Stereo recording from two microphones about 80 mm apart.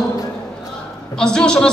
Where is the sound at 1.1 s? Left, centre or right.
Centre.